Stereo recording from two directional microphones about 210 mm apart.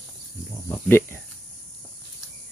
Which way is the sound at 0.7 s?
10° left (ahead or behind).